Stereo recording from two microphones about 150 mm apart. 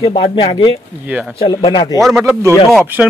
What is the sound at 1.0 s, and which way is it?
Speech, 10° right (ahead or behind).